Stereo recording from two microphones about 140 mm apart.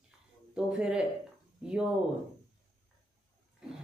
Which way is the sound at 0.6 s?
5° right (ahead or behind).